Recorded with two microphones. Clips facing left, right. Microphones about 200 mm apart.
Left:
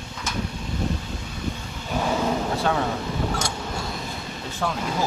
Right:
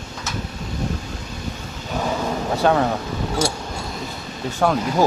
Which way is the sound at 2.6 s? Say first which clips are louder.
Right 10 dB; 65° right (ahead or behind).